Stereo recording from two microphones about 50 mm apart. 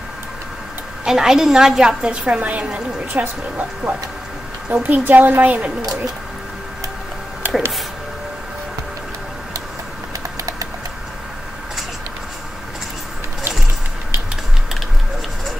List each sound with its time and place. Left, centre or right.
1.0 s a woman's voice: centre
2.2 s a woman's voice: right